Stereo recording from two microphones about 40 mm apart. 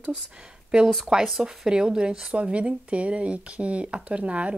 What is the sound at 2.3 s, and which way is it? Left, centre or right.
Speech, right.